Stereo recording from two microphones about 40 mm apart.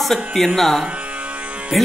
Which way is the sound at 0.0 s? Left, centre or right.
Centre.